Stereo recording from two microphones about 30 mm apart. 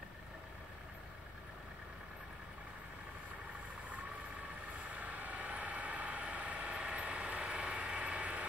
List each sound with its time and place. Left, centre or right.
4.9 s vehicle: right
6.9 s train: right